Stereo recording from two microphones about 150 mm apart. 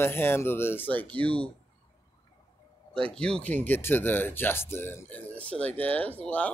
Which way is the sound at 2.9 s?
5° left (ahead or behind).